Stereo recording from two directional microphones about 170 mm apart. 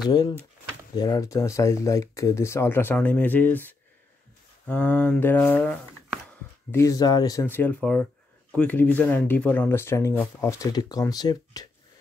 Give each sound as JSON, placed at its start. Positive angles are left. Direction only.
{"t": 0.0, "sound": "speech", "side_deg": 25}